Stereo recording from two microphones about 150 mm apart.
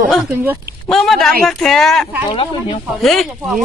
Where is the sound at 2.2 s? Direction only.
35° left (ahead or behind).